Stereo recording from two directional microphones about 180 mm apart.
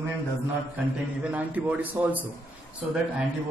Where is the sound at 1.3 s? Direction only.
10° right (ahead or behind).